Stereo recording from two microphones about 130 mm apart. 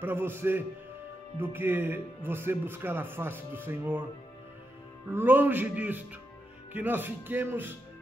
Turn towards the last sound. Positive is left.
turn(degrees=-15)  # may be behind; listen again after turning